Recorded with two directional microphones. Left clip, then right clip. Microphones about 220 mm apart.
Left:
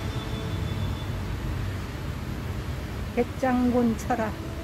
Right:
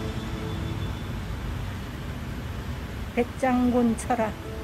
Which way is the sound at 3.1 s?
5° right (ahead or behind).